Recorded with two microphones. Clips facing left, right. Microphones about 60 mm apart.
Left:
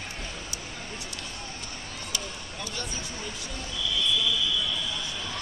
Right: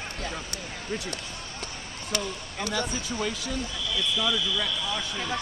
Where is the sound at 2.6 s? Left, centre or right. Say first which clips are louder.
Right 7 dB; right.